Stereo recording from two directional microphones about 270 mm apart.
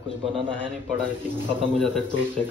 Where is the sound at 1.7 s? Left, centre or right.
Centre.